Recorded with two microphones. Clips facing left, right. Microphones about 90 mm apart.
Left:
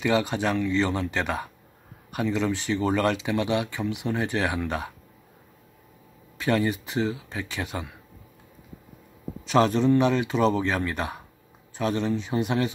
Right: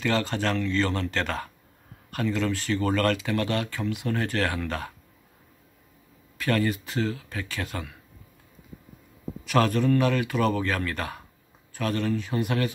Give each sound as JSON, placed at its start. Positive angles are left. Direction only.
{"t": 0.0, "sound": "speech", "side_deg": 15}
{"t": 6.3, "sound": "speech", "side_deg": 20}
{"t": 9.5, "sound": "speech", "side_deg": 20}